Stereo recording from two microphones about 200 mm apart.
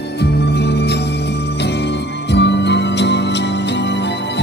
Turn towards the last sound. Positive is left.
turn(degrees=60)  # may be behind; listen again after turning